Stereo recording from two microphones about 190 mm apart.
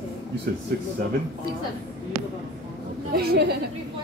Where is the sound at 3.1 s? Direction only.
55° right (ahead or behind).